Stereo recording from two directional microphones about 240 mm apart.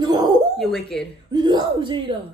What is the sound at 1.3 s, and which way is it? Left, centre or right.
Speech, centre.